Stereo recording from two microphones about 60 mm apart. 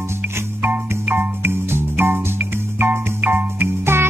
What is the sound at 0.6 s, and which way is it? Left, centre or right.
Music, right.